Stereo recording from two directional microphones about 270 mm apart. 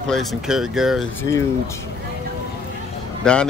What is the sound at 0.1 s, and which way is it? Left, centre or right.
Speech, centre.